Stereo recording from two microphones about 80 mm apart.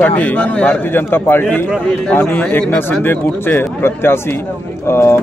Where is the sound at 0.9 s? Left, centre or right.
Left.